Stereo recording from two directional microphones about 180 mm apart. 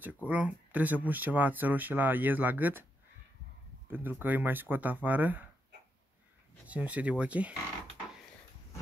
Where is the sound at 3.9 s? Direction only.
10° right (ahead or behind).